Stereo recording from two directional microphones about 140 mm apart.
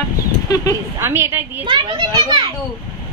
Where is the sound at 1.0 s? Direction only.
15° right (ahead or behind).